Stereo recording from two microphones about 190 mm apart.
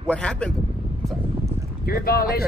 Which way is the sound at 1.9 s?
55° left (ahead or behind).